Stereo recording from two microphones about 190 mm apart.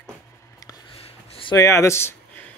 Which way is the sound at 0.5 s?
20° left (ahead or behind).